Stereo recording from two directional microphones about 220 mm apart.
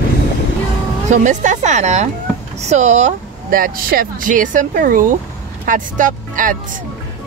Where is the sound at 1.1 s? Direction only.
35° right (ahead or behind).